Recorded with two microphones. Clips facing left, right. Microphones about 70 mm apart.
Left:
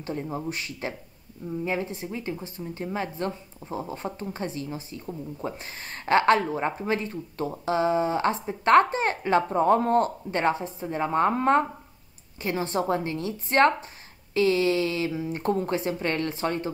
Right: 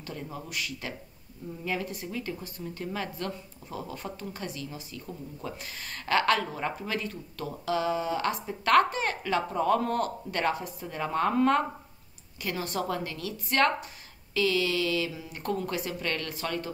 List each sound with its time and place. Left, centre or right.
0.0 s speech: left